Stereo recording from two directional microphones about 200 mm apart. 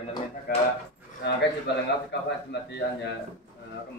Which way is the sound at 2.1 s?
60° left (ahead or behind).